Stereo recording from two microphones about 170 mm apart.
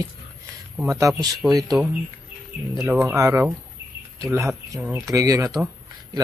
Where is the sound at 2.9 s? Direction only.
15° right (ahead or behind).